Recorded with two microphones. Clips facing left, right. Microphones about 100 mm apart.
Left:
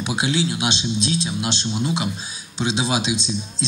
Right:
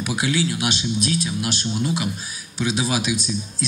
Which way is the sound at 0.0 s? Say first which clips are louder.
Even; 25° left (ahead or behind).